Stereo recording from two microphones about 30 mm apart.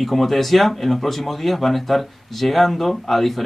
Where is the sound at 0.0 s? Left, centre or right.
Centre.